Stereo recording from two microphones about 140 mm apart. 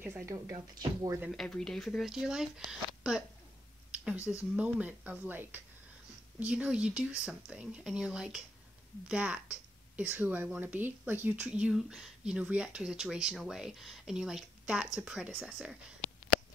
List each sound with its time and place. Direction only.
0.0 s speech: 15° right (ahead or behind)
1.3 s speech: 5° left (ahead or behind)